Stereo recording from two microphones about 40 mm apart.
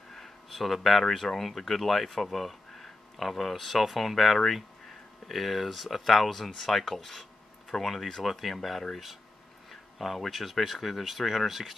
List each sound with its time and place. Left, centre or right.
0.1 s speech: centre